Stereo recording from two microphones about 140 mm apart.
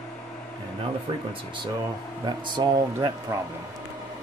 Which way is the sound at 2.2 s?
30° right (ahead or behind).